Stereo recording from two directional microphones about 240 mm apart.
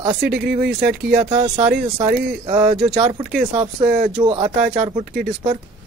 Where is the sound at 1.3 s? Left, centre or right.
Right.